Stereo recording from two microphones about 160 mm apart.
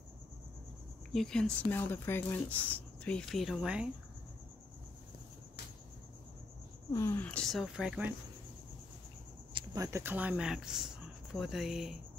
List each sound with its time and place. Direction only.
1.1 s speech: 5° left (ahead or behind)
6.9 s speech: 20° left (ahead or behind)
7.2 s speech: 5° left (ahead or behind)
9.5 s a sound: 30° right (ahead or behind)
9.8 s speech: 15° right (ahead or behind)